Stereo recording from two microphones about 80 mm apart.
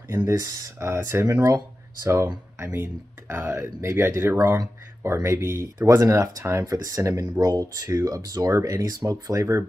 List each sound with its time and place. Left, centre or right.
0.4 s speech: right
2.6 s speech: right
6.6 s speech: right